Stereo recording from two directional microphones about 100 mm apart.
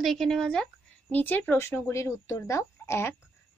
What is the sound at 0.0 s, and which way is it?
A woman's voice, centre (ahead or behind).